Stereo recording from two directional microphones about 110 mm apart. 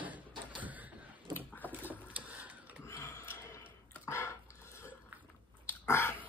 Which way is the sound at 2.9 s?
20° left (ahead or behind).